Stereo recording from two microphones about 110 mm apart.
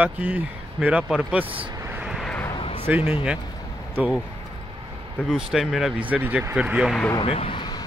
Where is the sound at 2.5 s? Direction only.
55° left (ahead or behind).